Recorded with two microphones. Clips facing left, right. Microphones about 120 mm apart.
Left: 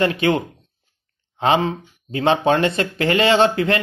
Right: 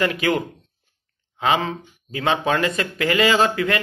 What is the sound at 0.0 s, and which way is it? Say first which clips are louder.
Speech: left 3 dB; 30° left (ahead or behind).